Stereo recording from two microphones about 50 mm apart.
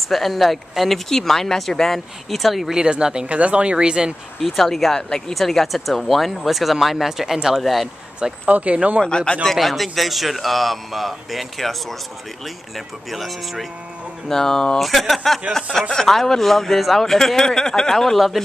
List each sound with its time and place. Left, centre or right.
0.1 s speech: centre
2.8 s speech: centre
3.3 s speech: right
4.4 s speech: centre
8.5 s speech: right
9.0 s a man's voice: centre
9.4 s speech: centre
12.7 s a man's voice: centre
14.8 s a man's voice: centre